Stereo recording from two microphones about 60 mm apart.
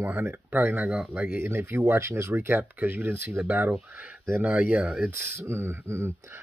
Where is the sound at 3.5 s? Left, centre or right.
Right.